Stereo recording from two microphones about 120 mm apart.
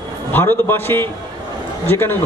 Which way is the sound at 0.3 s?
15° left (ahead or behind).